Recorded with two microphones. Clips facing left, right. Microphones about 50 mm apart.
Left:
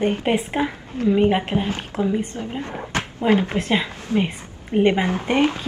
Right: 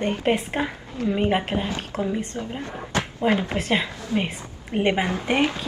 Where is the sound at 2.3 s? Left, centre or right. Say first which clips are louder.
Left 2 dB; left.